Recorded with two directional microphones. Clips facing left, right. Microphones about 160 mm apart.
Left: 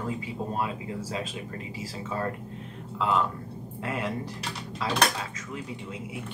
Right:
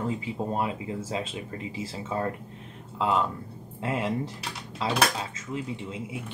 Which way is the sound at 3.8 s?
25° right (ahead or behind).